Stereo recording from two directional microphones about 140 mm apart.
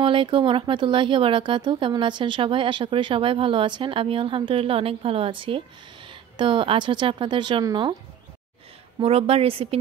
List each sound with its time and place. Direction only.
0.0 s speech: 40° right (ahead or behind)
9.0 s a woman's voice: 45° right (ahead or behind)